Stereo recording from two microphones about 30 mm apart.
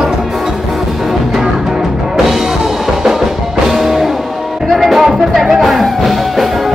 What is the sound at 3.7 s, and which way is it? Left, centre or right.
Music, centre.